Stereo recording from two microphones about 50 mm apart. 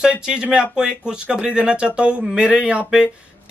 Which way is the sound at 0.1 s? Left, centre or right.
Centre.